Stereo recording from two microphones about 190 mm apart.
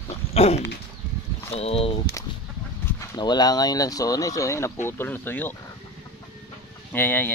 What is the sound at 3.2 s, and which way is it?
Speech, 20° left (ahead or behind).